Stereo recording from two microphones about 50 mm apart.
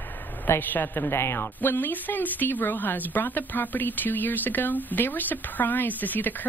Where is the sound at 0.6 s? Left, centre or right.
Left.